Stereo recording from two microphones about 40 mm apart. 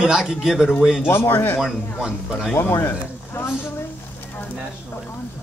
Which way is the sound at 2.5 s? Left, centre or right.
Left.